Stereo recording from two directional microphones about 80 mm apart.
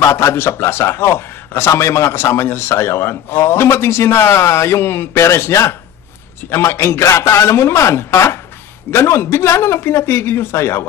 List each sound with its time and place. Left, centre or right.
0.0 s speech: left